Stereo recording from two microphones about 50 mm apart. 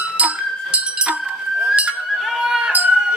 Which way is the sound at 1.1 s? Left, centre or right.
Right.